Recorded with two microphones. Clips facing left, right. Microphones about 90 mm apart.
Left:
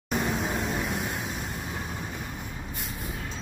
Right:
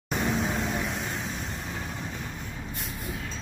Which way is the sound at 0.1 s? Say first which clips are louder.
Even; centre (ahead or behind).